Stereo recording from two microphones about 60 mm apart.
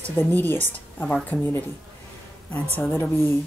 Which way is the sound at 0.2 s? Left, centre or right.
Left.